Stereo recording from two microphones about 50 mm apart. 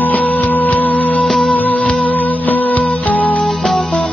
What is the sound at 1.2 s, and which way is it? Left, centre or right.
Music, centre.